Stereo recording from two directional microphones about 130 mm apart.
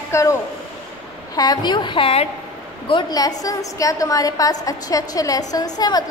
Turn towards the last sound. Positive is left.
turn(degrees=30)  # may be behind; listen again after turning